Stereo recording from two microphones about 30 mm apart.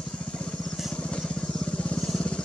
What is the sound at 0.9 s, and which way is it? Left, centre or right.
Vehicle, left.